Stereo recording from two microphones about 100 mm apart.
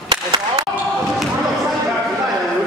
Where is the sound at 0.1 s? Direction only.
45° right (ahead or behind).